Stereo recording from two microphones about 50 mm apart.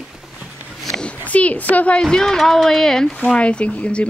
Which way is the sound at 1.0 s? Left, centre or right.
Left.